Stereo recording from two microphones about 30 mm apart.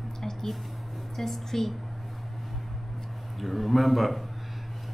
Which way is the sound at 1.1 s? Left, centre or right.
Centre.